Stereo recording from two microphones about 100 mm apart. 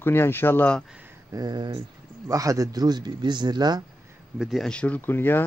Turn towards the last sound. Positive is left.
turn(degrees=20)  # may be behind; listen again after turning